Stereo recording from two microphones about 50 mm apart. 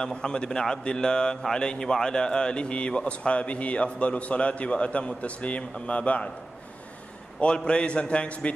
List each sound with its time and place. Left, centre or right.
0.0 s a man's voice: centre
7.3 s a man's voice: centre